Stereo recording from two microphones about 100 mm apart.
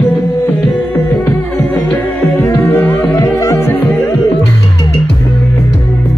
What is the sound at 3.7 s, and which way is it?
Music, 20° left (ahead or behind).